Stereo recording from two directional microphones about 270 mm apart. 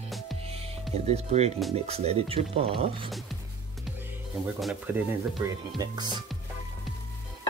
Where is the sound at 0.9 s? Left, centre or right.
Right.